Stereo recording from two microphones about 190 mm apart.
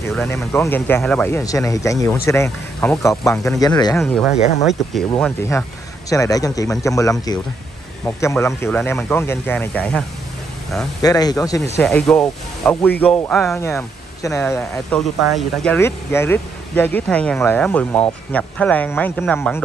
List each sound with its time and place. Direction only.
0.1 s speech: 10° left (ahead or behind)
4.0 s speech: centre (ahead or behind)
11.0 s speech: 20° left (ahead or behind)
11.8 s speech: 5° left (ahead or behind)
13.6 s speech: 15° left (ahead or behind)
14.6 s speech: 5° left (ahead or behind)